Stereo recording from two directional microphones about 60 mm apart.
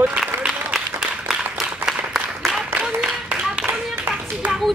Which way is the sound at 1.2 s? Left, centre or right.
Centre.